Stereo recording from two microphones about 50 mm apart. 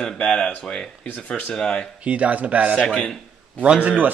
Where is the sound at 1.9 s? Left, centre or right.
Right.